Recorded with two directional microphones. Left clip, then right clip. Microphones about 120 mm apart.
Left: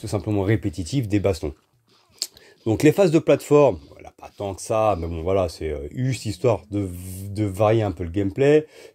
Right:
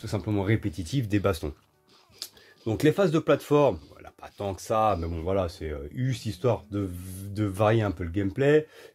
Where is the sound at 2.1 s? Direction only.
35° left (ahead or behind).